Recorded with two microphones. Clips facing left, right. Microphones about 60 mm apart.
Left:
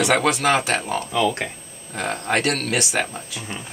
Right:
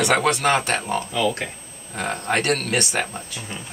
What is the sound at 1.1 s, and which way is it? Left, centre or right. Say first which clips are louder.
Speech: left 3 dB; left.